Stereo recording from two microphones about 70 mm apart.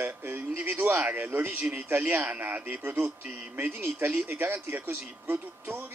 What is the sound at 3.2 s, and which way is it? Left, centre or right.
Speech, right.